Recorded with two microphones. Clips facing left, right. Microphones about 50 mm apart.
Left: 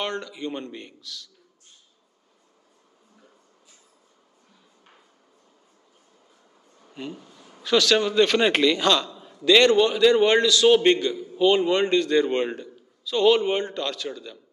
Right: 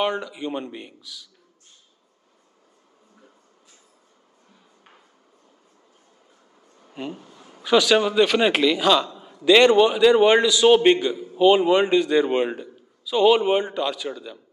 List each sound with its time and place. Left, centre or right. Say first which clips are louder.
0.0 s a man's voice: right 5 dB; centre
6.9 s a man's voice: right 3 dB; centre